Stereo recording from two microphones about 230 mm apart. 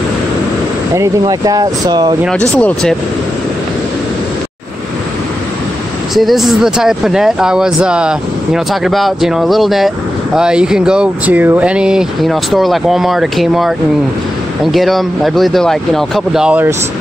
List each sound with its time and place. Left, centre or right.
0.9 s speech: centre
2.5 s speech: centre
6.1 s speech: centre